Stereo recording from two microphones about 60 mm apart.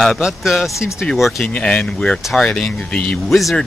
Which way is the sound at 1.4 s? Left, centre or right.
Left.